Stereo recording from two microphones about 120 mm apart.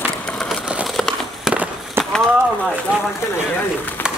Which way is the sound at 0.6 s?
5° right (ahead or behind).